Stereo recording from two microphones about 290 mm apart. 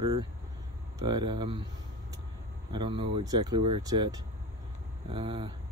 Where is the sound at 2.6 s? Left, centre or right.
Centre.